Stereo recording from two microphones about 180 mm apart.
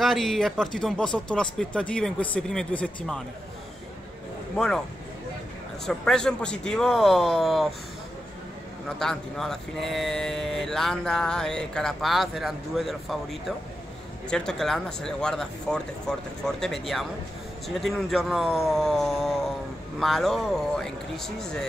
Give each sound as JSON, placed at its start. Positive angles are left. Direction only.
{"t": 0.0, "sound": "speech", "side_deg": 0}
{"t": 4.6, "sound": "speech", "side_deg": 5}
{"t": 5.9, "sound": "speech", "side_deg": 5}
{"t": 8.8, "sound": "speech", "side_deg": 5}